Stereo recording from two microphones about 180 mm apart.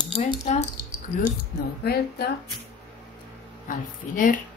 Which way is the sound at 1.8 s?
60° left (ahead or behind).